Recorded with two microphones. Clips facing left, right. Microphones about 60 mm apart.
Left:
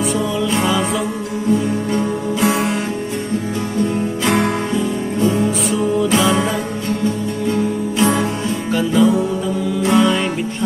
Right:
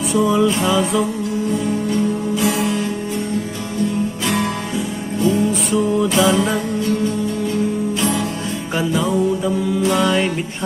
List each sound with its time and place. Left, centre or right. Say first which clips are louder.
0.1 s music: right 3 dB; centre
2.4 s music: left 3 dB; left
5.2 s music: even; left
5.7 s music: left 2 dB; centre
8.0 s music: left 7 dB; left
9.9 s music: left 5 dB; centre